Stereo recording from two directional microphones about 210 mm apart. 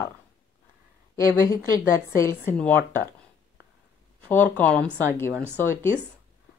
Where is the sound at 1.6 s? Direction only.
15° left (ahead or behind).